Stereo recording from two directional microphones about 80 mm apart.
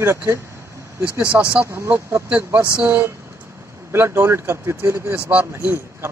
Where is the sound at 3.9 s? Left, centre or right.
Right.